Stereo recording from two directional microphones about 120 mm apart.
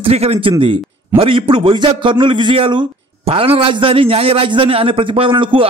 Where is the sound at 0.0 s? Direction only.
60° right (ahead or behind).